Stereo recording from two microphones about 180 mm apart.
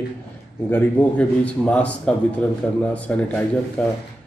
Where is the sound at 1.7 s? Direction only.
5° left (ahead or behind).